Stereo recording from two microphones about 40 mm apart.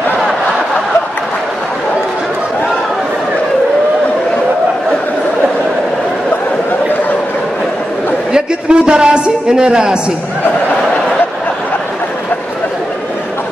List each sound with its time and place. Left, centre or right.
8.3 s a man's voice: right